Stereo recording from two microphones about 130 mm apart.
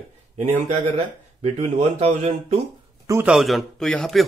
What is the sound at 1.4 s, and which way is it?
Speech, 55° right (ahead or behind).